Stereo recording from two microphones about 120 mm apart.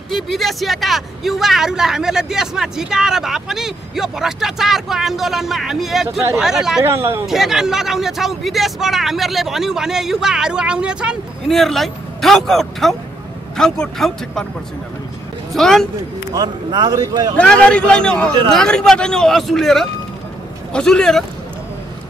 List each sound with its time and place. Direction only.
0.1 s speech: centre (ahead or behind)
6.8 s speech: 20° right (ahead or behind)
7.2 s speech: 5° right (ahead or behind)
15.5 s speech: 5° left (ahead or behind)
16.3 s speech: 35° right (ahead or behind)
17.4 s a man's voice: 10° left (ahead or behind)